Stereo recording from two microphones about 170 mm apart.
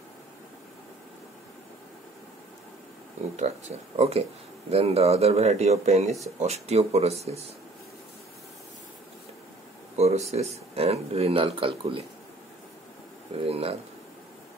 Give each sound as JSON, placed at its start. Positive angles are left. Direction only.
{"t": 3.3, "sound": "speech", "side_deg": -40}
{"t": 9.9, "sound": "a sound", "side_deg": -40}
{"t": 10.3, "sound": "speech", "side_deg": -35}
{"t": 13.4, "sound": "speech", "side_deg": -35}